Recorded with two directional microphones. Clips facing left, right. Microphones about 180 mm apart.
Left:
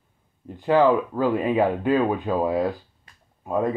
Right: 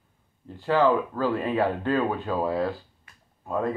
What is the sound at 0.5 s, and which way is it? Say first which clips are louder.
Speech: left 3 dB; 15° left (ahead or behind).